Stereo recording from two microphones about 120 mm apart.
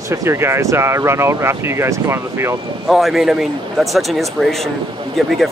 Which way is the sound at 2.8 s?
Centre (ahead or behind).